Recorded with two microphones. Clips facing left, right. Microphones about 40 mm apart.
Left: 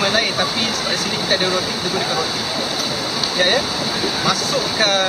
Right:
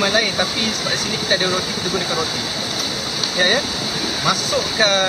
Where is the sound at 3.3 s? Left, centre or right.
Centre.